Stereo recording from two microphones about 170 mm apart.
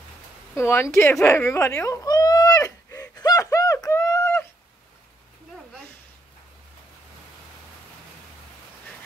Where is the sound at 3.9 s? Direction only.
15° left (ahead or behind).